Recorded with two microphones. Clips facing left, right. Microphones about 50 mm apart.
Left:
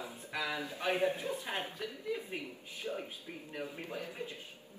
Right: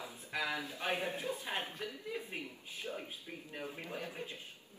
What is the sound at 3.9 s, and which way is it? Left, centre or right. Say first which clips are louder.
Speech: left 1 dB; right.